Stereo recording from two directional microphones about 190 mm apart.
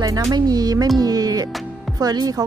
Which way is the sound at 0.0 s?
20° right (ahead or behind).